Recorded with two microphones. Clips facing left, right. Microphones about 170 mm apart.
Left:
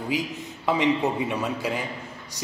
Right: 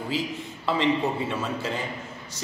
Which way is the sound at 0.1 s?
15° left (ahead or behind).